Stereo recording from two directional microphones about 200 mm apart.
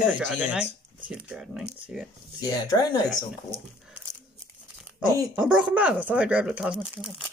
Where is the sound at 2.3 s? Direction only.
20° left (ahead or behind).